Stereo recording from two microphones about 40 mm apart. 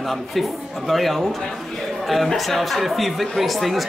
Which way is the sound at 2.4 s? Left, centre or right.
Centre.